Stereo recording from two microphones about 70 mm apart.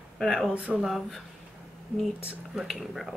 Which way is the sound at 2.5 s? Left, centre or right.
Centre.